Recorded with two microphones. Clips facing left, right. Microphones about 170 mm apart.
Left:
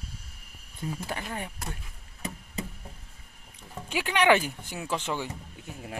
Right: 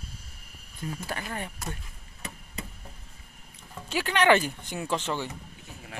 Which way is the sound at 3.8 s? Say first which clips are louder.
Even; 10° left (ahead or behind).